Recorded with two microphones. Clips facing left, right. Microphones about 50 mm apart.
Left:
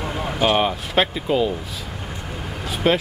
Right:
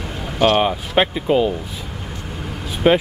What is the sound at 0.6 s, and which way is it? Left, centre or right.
Speech, centre.